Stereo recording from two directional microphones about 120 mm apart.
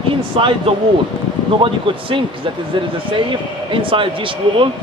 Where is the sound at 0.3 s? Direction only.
50° right (ahead or behind).